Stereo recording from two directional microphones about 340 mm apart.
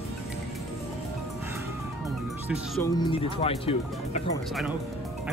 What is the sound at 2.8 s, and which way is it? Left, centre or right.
Speech, centre.